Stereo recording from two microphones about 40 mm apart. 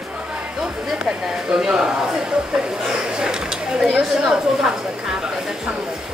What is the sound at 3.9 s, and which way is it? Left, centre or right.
Chatter, centre.